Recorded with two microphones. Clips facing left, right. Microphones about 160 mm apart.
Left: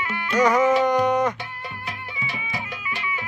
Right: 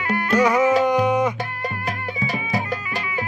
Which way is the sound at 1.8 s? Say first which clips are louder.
Right 7 dB; 40° right (ahead or behind).